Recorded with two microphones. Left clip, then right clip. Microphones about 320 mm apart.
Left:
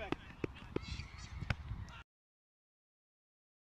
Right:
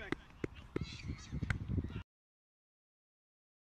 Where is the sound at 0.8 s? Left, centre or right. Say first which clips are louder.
Right 1 dB; right.